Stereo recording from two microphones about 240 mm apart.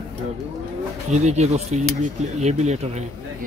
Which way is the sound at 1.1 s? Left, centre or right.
Right.